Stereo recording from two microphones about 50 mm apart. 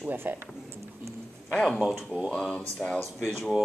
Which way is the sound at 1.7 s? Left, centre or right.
Centre.